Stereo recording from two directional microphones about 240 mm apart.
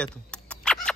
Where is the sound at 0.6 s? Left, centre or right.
Centre.